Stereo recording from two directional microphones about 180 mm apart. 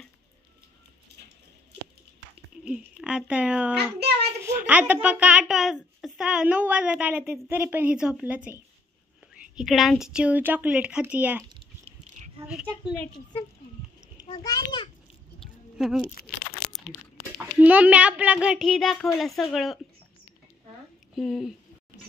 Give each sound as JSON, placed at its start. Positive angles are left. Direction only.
{"t": 2.6, "sound": "speech", "side_deg": -5}
{"t": 4.0, "sound": "child singing", "side_deg": -65}
{"t": 4.4, "sound": "a child's voice", "side_deg": -10}
{"t": 12.4, "sound": "a child's voice", "side_deg": -5}
{"t": 14.2, "sound": "a child's voice", "side_deg": 25}
{"t": 15.4, "sound": "livestock", "side_deg": 0}
{"t": 16.2, "sound": "speech", "side_deg": 55}
{"t": 17.4, "sound": "a child's voice", "side_deg": -10}
{"t": 21.1, "sound": "speech", "side_deg": 0}